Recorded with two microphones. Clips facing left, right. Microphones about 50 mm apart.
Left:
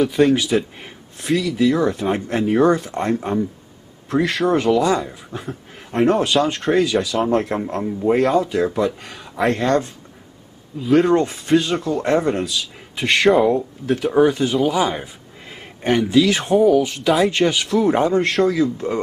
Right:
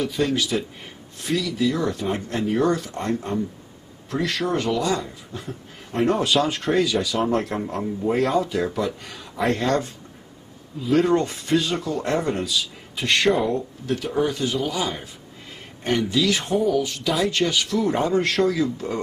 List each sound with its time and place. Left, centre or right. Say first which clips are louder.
0.0 s a man's voice: left 7 dB; centre
1.2 s a man's voice: left 5 dB; centre
5.9 s speech: left 4 dB; centre
7.4 s speech: left 4 dB; centre
8.2 s a man's voice: left 3 dB; centre; by 15.0 s left
16.1 s speech: left 6 dB; left
18.4 s a man's voice: left 4 dB; centre